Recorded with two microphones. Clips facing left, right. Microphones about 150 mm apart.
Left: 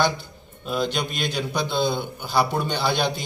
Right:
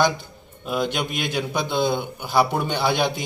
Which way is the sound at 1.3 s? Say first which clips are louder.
Right 2 dB; 10° right (ahead or behind).